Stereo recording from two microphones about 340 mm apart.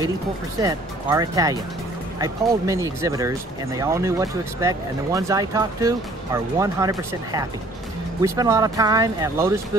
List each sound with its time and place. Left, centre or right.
0.6 s speech: centre
2.6 s speech: centre